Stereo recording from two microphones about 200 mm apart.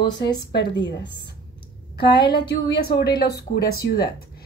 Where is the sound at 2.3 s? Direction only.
55° left (ahead or behind).